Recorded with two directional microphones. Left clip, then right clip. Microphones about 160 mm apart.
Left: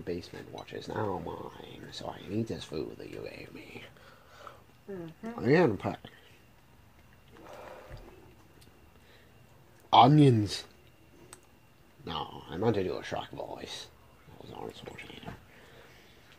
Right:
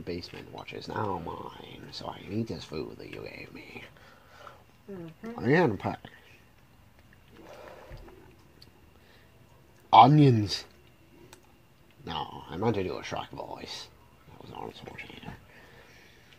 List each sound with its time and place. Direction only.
0.0 s speech: 20° left (ahead or behind)
9.8 s speech: 20° left (ahead or behind)
12.0 s speech: 20° left (ahead or behind)